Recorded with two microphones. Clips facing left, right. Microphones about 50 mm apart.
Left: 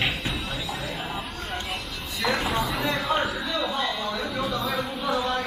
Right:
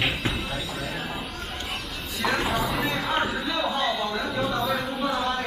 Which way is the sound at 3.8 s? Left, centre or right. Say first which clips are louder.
Right 2 dB; right.